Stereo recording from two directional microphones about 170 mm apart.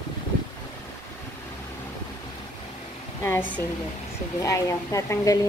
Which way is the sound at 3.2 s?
15° left (ahead or behind).